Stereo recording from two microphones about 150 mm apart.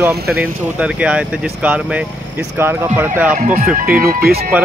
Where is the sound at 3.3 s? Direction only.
60° right (ahead or behind).